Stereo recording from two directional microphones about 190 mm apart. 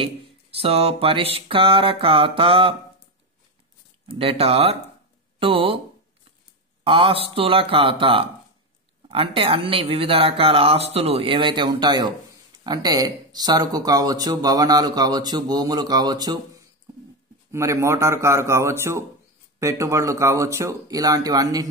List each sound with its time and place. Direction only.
0.0 s speech: 30° right (ahead or behind)
4.1 s speech: 30° right (ahead or behind)
6.8 s speech: 25° right (ahead or behind)